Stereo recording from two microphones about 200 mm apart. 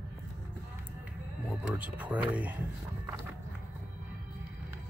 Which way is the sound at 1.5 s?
5° right (ahead or behind).